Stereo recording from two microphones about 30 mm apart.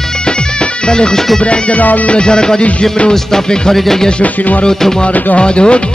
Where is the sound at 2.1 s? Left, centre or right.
Left.